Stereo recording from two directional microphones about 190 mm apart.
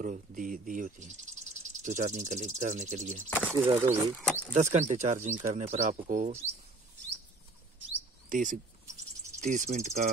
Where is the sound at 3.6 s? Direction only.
20° right (ahead or behind).